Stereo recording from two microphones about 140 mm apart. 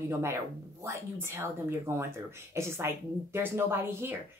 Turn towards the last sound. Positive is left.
turn(degrees=-15)  # may be behind; listen again after turning